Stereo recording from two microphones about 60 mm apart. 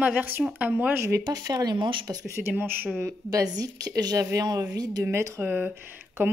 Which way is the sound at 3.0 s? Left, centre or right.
Right.